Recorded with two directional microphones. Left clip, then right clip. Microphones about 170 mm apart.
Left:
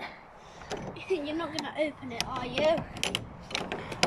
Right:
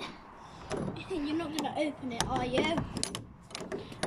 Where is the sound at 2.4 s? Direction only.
15° left (ahead or behind).